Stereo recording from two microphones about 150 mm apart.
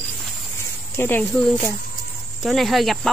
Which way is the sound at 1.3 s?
Centre (ahead or behind).